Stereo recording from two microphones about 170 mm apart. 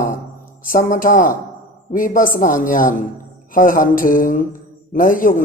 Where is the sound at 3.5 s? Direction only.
55° left (ahead or behind).